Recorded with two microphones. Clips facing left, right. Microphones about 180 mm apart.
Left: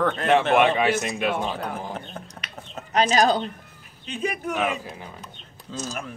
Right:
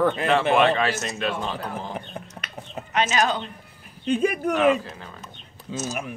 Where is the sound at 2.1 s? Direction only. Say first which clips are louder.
Right 2 dB; 10° right (ahead or behind).